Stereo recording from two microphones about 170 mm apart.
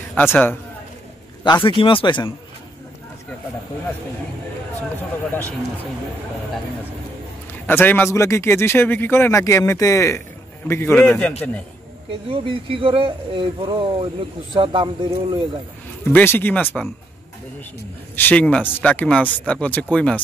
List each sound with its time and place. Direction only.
0.1 s speech: 10° left (ahead or behind)
1.4 s speech: 30° left (ahead or behind)
7.6 s speech: 10° left (ahead or behind)
12.1 s speech: 30° right (ahead or behind)
16.1 s speech: 10° left (ahead or behind)
18.1 s speech: 10° left (ahead or behind)